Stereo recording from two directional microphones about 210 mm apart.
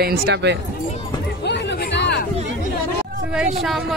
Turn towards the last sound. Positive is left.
turn(degrees=0)  # may be behind; listen again after turning